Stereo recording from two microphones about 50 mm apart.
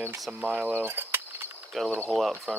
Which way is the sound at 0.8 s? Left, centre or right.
Right.